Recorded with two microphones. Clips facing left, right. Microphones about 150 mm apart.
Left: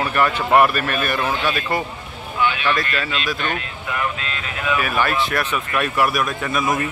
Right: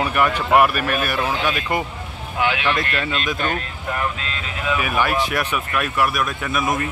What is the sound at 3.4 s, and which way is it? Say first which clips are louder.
Speech: right 1 dB; 40° right (ahead or behind).